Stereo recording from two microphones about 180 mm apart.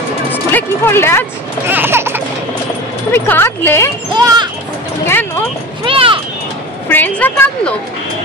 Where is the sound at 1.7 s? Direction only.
10° right (ahead or behind).